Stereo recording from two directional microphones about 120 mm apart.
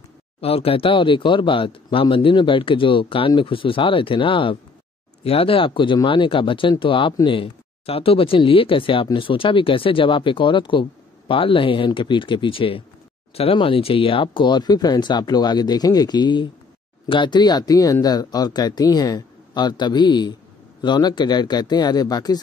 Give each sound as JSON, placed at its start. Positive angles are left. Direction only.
{"t": 0.4, "sound": "speech", "side_deg": 55}